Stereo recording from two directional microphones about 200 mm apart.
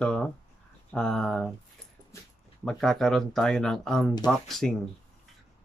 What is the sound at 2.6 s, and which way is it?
Speech, 5° left (ahead or behind).